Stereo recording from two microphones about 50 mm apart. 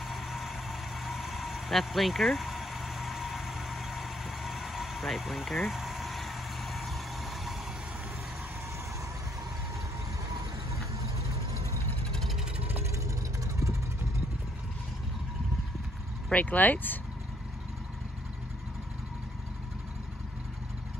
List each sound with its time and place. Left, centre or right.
0.0 s vehicle: centre
16.3 s speech: left